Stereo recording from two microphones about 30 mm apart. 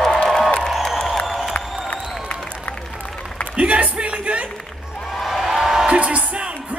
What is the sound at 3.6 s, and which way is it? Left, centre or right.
Music, right.